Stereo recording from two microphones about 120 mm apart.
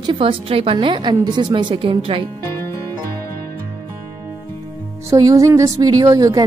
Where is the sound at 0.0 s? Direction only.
45° right (ahead or behind).